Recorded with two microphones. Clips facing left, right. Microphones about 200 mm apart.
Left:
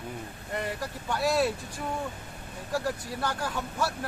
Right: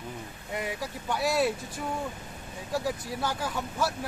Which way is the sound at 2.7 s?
5° right (ahead or behind).